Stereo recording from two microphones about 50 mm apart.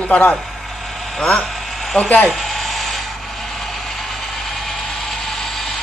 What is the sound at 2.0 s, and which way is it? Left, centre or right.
Speech, left.